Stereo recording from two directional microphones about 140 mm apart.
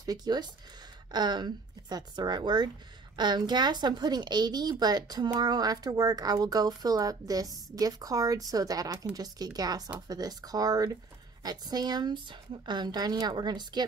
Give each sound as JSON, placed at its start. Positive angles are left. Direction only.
{"t": 0.0, "sound": "a woman's voice", "side_deg": -30}